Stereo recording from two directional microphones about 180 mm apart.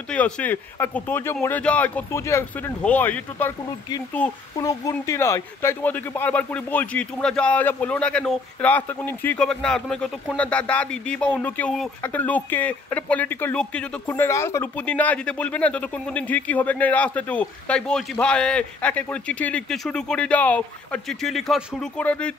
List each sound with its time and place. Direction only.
0.1 s speech: 10° left (ahead or behind)